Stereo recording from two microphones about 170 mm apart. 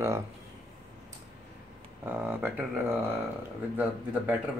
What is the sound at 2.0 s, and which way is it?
Speech, 10° right (ahead or behind).